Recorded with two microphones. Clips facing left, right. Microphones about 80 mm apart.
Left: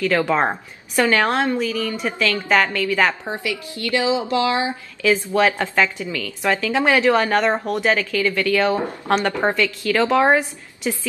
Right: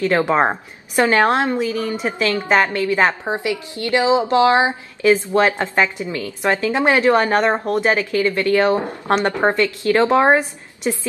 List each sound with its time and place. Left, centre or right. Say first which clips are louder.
0.0 s a woman's voice: right 2 dB; right